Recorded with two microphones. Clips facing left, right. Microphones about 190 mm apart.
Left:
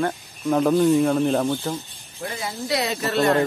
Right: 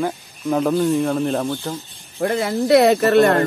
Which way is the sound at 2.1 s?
60° right (ahead or behind).